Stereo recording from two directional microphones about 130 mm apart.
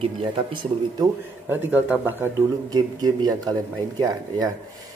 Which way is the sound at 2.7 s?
30° right (ahead or behind).